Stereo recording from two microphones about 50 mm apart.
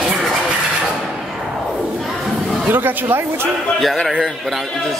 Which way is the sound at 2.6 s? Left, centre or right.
Right.